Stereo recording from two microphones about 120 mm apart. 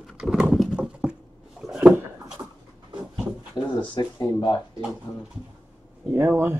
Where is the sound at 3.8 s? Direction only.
35° left (ahead or behind).